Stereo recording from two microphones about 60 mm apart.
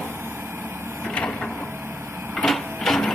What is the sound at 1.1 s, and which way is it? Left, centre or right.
Printer, centre.